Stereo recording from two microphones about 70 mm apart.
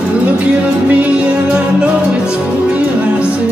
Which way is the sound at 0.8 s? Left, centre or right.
Centre.